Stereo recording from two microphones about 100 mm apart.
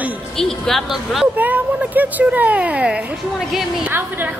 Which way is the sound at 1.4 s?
15° right (ahead or behind).